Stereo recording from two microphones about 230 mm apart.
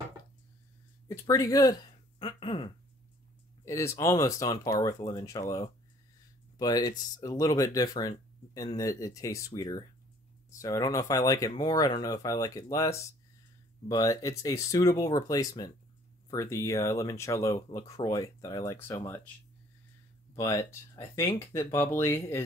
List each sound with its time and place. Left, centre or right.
1.0 s speech: centre
3.6 s speech: centre
20.3 s speech: centre